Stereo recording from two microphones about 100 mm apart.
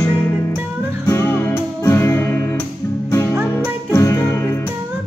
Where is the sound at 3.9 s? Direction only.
30° left (ahead or behind).